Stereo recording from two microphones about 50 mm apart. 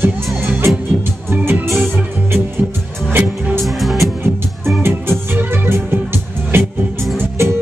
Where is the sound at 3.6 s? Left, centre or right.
Centre.